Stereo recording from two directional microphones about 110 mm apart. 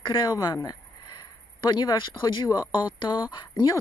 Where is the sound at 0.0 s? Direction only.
45° left (ahead or behind).